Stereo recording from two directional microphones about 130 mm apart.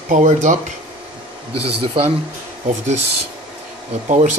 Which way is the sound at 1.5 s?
45° right (ahead or behind).